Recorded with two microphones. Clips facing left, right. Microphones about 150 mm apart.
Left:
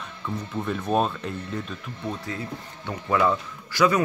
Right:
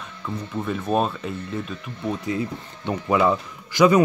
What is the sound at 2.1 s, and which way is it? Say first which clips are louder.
Speech: right 6 dB; 20° right (ahead or behind).